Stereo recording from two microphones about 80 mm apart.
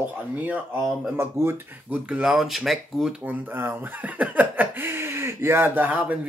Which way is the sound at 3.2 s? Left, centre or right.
Right.